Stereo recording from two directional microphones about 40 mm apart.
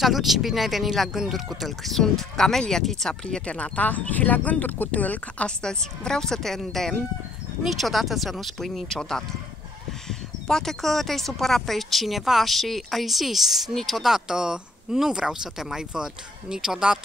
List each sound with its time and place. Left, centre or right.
0.0 s speech: centre
1.7 s speech: centre
3.1 s speech: left
3.5 s speech: left
5.6 s speech: centre
14.0 s speech: centre